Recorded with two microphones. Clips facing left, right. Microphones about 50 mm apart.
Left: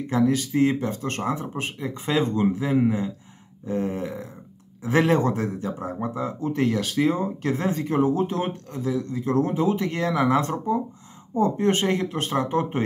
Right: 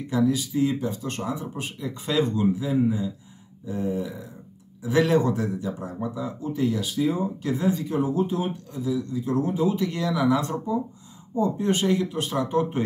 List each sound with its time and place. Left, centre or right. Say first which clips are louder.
0.1 s speech: left 1 dB; left
2.5 s speech: left 2 dB; left
4.8 s speech: left 1 dB; left